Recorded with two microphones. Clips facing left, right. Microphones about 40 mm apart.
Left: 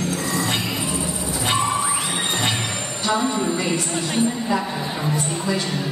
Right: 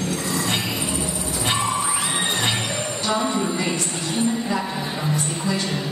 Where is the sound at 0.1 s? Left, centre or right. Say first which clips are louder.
Left 1 dB; centre.